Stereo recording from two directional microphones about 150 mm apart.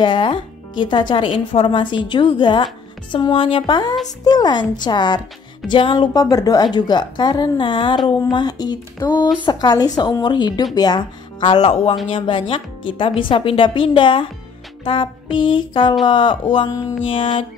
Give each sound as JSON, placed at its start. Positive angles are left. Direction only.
{"t": 0.0, "sound": "a woman's voice", "side_deg": 30}